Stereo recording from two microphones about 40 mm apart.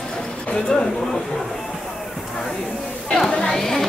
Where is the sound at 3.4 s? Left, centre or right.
Centre.